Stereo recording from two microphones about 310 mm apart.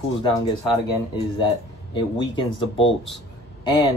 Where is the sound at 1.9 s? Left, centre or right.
Centre.